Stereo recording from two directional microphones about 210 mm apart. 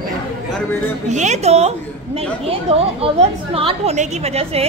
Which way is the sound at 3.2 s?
30° right (ahead or behind).